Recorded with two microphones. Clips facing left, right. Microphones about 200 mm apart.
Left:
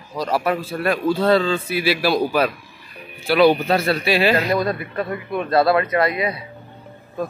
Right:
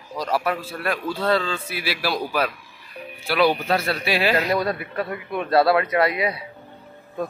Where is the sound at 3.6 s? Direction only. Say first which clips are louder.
Left 4 dB; 5° right (ahead or behind).